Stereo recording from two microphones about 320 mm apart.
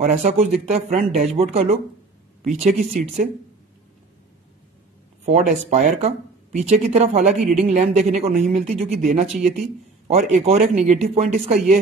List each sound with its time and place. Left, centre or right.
0.0 s speech: right
5.2 s speech: right